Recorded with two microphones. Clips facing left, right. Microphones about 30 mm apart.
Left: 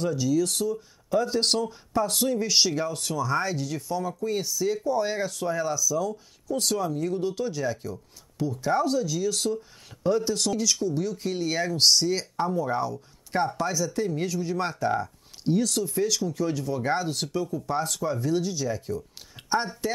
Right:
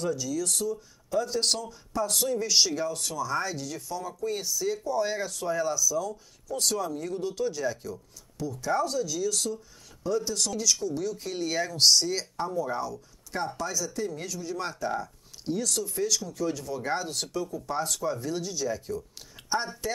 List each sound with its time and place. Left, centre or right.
0.0 s speech: centre
2.0 s speech: centre
8.4 s speech: left
8.8 s speech: centre
10.6 s speech: centre
19.3 s speech: centre